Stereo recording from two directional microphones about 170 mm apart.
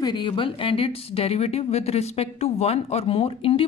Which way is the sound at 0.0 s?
25° left (ahead or behind).